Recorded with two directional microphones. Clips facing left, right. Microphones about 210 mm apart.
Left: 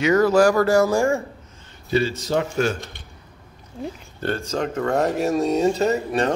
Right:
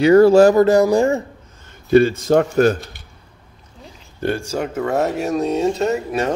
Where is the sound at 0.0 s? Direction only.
30° right (ahead or behind).